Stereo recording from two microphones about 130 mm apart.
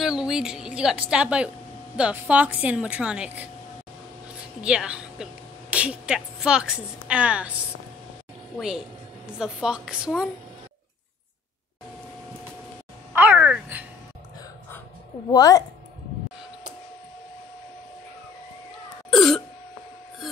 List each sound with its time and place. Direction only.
0.0 s a woman's voice: 5° right (ahead or behind)
13.1 s speech: 15° right (ahead or behind)
15.3 s a woman's voice: 25° left (ahead or behind)
19.1 s throat clearing: 5° left (ahead or behind)